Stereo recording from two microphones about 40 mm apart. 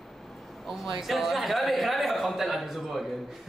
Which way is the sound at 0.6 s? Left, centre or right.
Centre.